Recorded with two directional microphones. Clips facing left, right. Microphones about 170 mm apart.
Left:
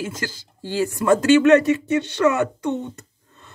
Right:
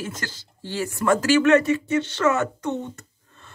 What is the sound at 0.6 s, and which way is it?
Speech, 15° left (ahead or behind).